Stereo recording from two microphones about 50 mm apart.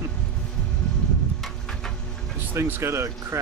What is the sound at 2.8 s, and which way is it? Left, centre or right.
Speech, right.